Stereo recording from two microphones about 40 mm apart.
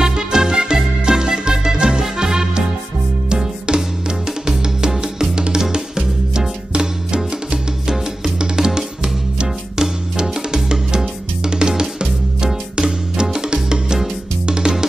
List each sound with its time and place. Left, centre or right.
0.0 s music: centre